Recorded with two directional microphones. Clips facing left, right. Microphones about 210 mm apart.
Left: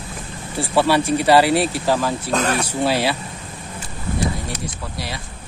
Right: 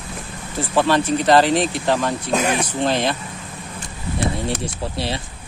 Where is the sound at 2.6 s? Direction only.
10° left (ahead or behind).